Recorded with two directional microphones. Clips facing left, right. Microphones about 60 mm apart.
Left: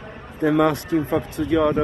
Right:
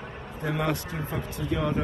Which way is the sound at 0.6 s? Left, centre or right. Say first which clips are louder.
Left 10 dB; left.